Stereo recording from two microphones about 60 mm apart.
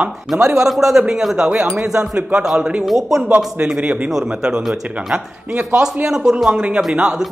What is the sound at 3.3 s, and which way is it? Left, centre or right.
Speech, right.